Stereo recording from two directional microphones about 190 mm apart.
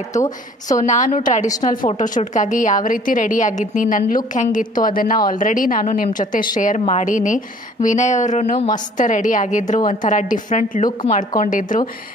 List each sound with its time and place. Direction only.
0.1 s a woman's voice: 40° left (ahead or behind)